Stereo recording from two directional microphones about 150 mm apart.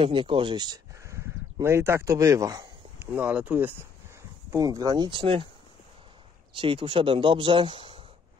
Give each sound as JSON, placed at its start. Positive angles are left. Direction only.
{"t": 0.0, "sound": "speech", "side_deg": -35}
{"t": 3.1, "sound": "speech", "side_deg": -10}
{"t": 4.5, "sound": "speech", "side_deg": -25}
{"t": 6.5, "sound": "speech", "side_deg": -35}